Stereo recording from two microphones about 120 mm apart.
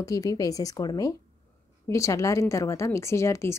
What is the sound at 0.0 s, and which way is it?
Speech, 30° left (ahead or behind).